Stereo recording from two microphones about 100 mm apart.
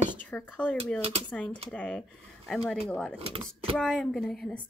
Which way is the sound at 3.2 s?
75° right (ahead or behind).